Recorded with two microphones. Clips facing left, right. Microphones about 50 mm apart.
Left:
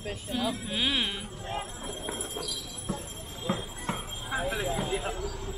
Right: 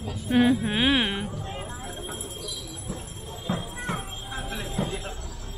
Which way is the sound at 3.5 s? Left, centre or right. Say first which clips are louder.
Right 1 dB; left.